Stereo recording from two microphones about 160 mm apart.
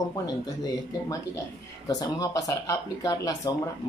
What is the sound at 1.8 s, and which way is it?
Speech, 20° left (ahead or behind).